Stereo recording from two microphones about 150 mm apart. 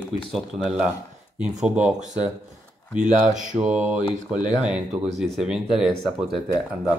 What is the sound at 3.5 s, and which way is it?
Speech, 10° right (ahead or behind).